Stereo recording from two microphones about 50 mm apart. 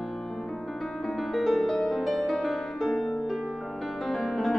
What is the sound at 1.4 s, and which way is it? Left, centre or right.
Music, centre.